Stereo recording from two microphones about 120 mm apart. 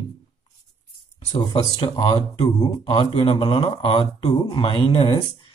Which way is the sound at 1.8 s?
50° left (ahead or behind).